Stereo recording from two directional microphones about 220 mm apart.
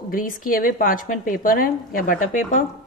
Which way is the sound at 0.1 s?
40° left (ahead or behind).